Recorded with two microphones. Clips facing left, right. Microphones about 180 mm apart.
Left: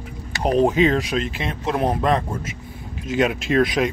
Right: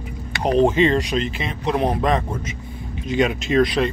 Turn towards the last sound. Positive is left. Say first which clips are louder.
# right 1 dB
turn(degrees=10)  # may be behind; listen again after turning